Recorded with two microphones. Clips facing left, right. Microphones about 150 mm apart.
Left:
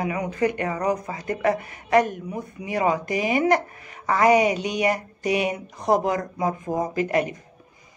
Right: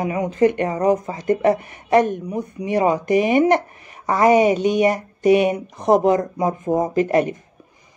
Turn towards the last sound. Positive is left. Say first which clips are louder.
# right 5 dB
turn(degrees=-25)  # may be behind; listen again after turning